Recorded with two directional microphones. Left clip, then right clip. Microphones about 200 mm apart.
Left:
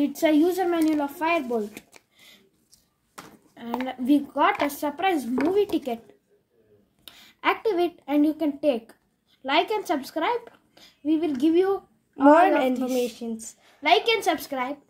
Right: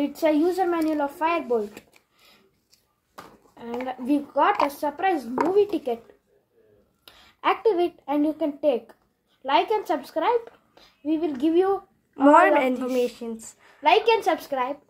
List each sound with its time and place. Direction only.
0.0 s a woman's voice: 35° left (ahead or behind)
3.8 s speech: 45° left (ahead or behind)
7.1 s a woman's voice: 45° left (ahead or behind)
12.2 s a woman's voice: 5° left (ahead or behind)
13.8 s speech: 45° left (ahead or behind)